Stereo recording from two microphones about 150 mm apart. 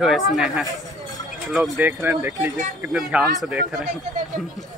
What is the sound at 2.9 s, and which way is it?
Speech, centre (ahead or behind).